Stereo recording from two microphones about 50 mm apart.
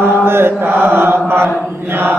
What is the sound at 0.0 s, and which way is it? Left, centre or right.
Mantra, right.